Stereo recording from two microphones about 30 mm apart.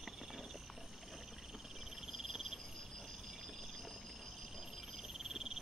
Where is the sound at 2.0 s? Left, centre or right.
Centre.